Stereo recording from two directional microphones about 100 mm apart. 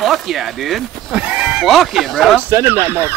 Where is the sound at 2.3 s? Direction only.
25° right (ahead or behind).